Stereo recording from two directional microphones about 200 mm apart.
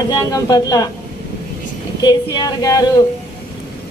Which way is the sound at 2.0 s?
20° left (ahead or behind).